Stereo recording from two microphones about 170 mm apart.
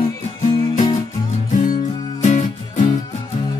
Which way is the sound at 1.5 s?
50° left (ahead or behind).